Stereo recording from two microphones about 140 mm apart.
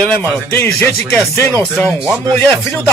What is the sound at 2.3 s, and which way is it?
Speech, 15° left (ahead or behind).